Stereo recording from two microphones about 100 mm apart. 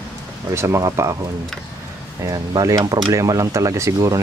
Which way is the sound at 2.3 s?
35° right (ahead or behind).